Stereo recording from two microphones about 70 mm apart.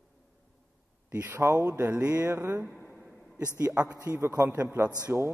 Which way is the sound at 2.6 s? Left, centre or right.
Centre.